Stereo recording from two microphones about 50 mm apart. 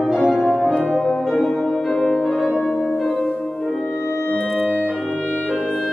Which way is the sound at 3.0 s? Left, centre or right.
Left.